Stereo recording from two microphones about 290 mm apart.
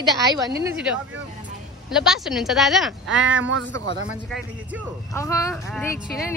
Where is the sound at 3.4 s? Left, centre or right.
Right.